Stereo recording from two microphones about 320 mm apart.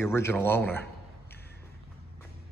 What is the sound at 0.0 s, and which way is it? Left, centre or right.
Speech, centre.